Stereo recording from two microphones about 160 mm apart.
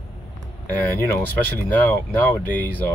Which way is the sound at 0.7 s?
10° left (ahead or behind).